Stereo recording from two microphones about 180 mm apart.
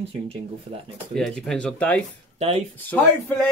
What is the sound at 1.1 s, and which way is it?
Speech, centre (ahead or behind).